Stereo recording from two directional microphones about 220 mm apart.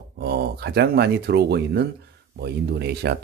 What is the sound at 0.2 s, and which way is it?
Speech, 45° right (ahead or behind).